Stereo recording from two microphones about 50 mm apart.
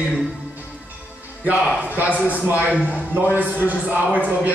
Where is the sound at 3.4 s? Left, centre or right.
Right.